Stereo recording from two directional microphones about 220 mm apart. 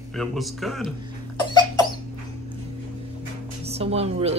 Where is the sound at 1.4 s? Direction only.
20° left (ahead or behind).